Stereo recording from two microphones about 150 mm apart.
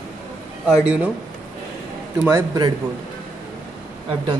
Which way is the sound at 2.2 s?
25° right (ahead or behind).